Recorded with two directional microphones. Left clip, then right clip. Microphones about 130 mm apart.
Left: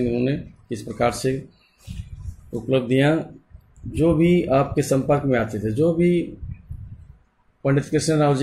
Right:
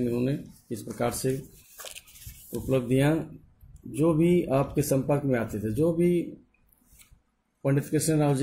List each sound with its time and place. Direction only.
0.0 s speech: 20° right (ahead or behind)
2.7 s speech: 30° right (ahead or behind)
7.6 s speech: 30° right (ahead or behind)